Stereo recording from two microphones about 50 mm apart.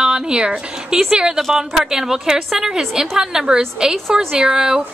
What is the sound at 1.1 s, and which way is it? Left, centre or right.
A woman's voice, centre.